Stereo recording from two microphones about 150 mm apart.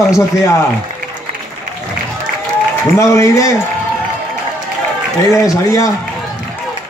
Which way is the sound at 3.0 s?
20° left (ahead or behind).